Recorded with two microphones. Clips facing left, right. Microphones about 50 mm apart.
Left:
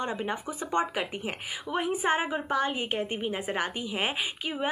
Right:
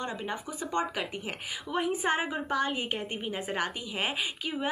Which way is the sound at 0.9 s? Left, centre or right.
Centre.